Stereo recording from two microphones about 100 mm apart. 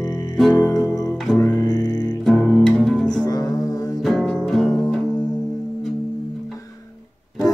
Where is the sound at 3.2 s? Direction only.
40° left (ahead or behind).